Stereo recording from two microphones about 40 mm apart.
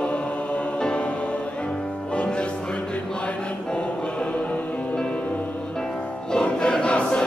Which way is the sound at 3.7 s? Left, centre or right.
Left.